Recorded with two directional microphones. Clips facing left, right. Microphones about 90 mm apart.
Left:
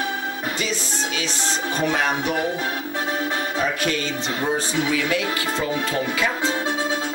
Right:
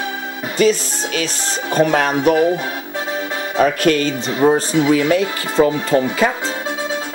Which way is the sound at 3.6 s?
55° right (ahead or behind).